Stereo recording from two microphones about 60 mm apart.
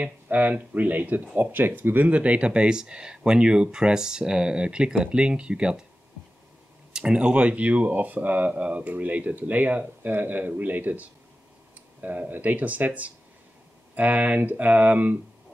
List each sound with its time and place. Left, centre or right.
0.0 s speech: right
6.9 s speech: centre